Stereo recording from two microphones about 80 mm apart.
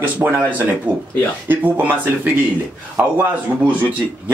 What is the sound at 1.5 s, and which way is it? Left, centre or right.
Speech, right.